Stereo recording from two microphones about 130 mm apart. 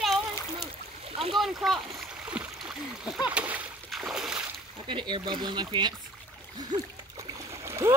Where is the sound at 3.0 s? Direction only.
5° right (ahead or behind).